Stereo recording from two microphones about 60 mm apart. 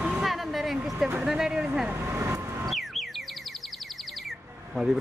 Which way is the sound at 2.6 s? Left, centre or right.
Centre.